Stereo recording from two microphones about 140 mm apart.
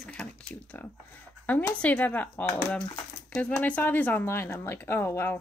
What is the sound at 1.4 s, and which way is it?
Speech, 10° left (ahead or behind).